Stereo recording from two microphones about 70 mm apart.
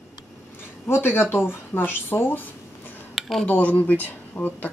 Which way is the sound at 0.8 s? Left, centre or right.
Left.